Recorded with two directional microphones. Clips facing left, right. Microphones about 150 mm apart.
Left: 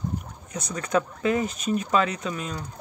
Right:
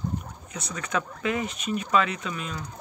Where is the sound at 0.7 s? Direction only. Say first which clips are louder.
Left 5 dB; 35° left (ahead or behind).